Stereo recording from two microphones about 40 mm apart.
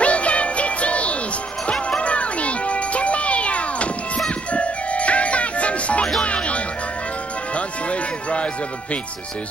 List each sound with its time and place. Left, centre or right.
0.0 s music: left